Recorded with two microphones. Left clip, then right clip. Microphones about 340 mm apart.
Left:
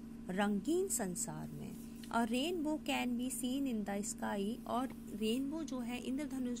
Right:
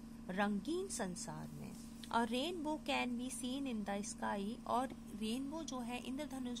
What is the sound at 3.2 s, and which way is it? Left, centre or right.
Speech, right.